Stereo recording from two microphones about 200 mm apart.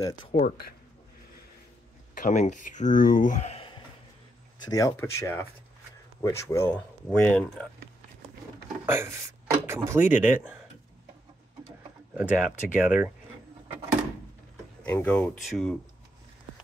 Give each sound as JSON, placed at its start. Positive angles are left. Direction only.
{"t": 0.3, "sound": "speech", "side_deg": 45}
{"t": 2.1, "sound": "speech", "side_deg": 40}
{"t": 4.6, "sound": "speech", "side_deg": 15}
{"t": 8.8, "sound": "speech", "side_deg": -10}
{"t": 12.1, "sound": "speech", "side_deg": -5}
{"t": 14.8, "sound": "speech", "side_deg": 10}